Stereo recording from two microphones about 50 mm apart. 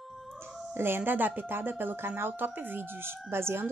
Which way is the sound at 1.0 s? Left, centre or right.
Right.